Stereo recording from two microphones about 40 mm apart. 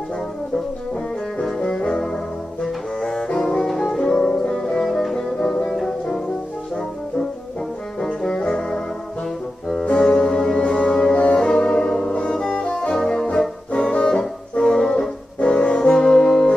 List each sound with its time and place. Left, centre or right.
1.6 s brass instrument: left
2.6 s saxophone: centre
3.3 s music: centre
4.8 s music: centre
5.4 s music: centre
8.2 s brass instrument: centre
9.9 s music: centre
12.9 s brass instrument: centre
13.7 s brass instrument: left
14.5 s music: centre
15.4 s brass instrument: left